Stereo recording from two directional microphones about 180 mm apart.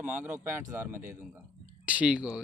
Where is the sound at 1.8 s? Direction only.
5° right (ahead or behind).